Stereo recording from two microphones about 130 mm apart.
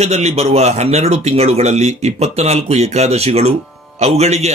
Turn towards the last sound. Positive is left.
turn(degrees=-55)  # may be behind; listen again after turning